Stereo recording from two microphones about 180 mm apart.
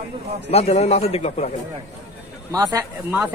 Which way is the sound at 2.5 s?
20° right (ahead or behind).